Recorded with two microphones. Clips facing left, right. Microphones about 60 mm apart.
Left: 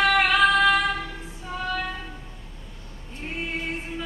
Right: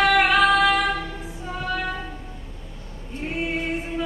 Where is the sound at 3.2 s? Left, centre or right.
Centre.